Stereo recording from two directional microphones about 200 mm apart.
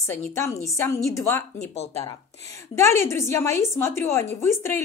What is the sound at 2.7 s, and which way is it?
Speech, 15° left (ahead or behind).